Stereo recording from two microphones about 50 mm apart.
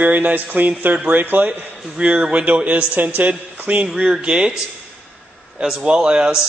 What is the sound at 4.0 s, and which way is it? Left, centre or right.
Speech, centre.